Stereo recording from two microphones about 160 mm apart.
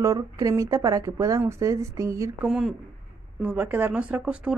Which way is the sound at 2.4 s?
Centre (ahead or behind).